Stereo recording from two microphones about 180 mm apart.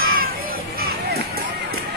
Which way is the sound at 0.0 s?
55° right (ahead or behind).